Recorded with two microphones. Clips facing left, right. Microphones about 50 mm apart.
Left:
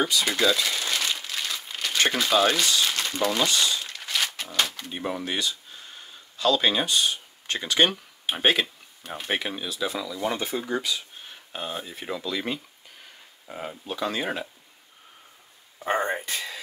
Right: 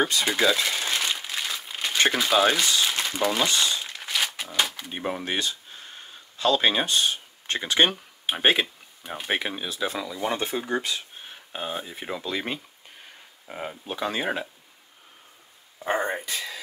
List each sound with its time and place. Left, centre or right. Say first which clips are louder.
0.3 s crumpling: right 1 dB; centre
2.1 s speech: even; centre
3.4 s speech: even; right
3.8 s crumpling: even; centre
4.9 s speech: right 1 dB; right
8.4 s speech: right 1 dB; centre
9.7 s speech: even; right
11.5 s speech: right 1 dB; centre; by 12.5 s right
13.8 s speech: right 1 dB; right
16.3 s a sound: even; left